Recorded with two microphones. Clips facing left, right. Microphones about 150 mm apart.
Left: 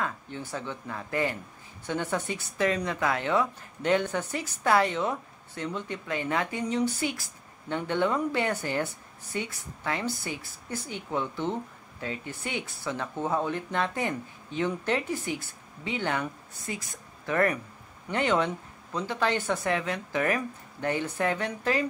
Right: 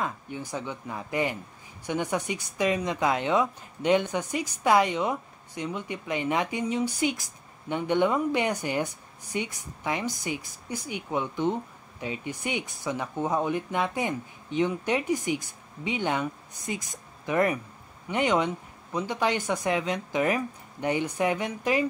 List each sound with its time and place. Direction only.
0.0 s speech: 15° right (ahead or behind)